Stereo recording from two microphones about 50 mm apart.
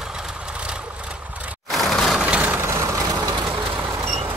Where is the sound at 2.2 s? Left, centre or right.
Right.